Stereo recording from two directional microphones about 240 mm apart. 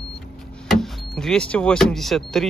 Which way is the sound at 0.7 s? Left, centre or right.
Centre.